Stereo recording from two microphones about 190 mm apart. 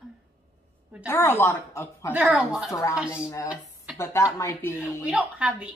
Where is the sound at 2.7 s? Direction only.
15° left (ahead or behind).